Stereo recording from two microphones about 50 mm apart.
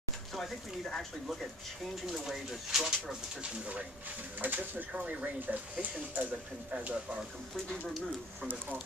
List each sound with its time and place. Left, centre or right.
0.3 s speech: centre
4.4 s speech: right